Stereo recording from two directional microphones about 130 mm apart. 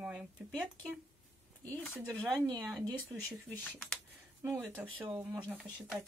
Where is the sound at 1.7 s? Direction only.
10° left (ahead or behind).